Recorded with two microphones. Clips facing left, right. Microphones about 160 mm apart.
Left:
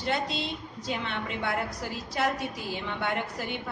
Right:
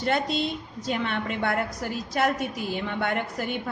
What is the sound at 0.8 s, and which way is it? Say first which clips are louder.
A woman's voice: right 5 dB; 55° right (ahead or behind).